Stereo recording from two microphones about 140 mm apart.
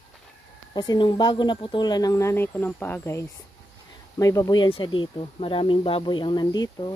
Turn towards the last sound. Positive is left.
turn(degrees=30)  # may be behind; listen again after turning